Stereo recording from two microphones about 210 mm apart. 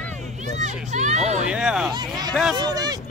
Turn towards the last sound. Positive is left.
turn(degrees=-20)  # may be behind; listen again after turning